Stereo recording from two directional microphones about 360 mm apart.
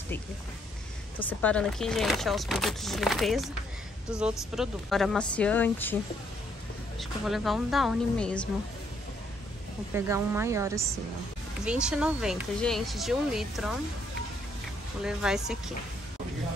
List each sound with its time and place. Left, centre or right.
1.4 s speech: centre
7.0 s speech: centre
9.9 s a woman's voice: centre
15.0 s speech: centre